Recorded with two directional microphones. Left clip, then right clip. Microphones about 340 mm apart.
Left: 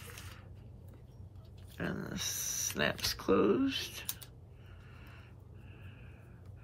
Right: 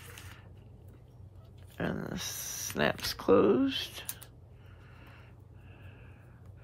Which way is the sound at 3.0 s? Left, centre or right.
Centre.